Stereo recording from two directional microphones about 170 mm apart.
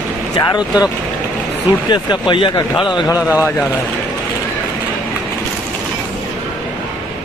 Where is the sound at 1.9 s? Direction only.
25° left (ahead or behind).